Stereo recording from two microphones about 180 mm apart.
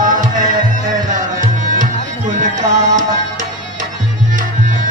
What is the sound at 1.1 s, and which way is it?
Music, 45° right (ahead or behind).